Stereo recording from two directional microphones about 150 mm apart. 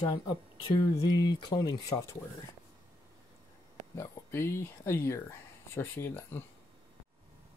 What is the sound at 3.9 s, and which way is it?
Speech, 20° left (ahead or behind).